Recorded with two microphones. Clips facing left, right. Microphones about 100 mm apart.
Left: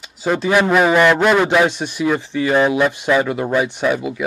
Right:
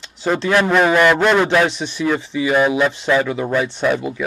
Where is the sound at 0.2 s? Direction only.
5° left (ahead or behind).